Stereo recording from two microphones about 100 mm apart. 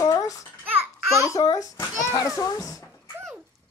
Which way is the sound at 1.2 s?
35° left (ahead or behind).